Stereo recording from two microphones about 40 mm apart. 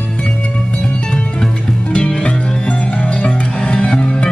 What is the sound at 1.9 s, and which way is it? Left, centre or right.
Music, left.